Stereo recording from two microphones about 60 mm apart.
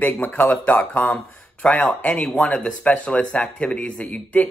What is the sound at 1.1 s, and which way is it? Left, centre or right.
A man's voice, centre.